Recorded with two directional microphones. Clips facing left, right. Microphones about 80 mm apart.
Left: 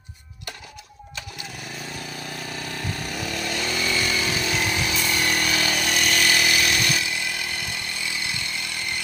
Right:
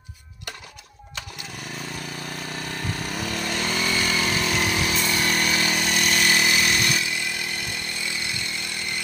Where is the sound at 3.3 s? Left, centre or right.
Right.